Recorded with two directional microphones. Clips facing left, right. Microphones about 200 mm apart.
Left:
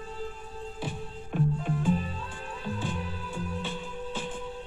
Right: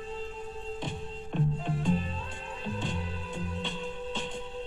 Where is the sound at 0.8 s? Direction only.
5° left (ahead or behind).